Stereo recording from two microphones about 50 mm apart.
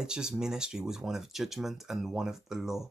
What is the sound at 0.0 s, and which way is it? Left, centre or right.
Speech, centre.